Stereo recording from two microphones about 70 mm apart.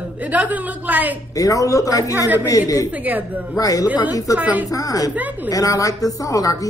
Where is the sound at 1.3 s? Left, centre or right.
Left.